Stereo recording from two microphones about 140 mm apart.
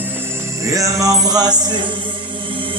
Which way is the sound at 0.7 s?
25° right (ahead or behind).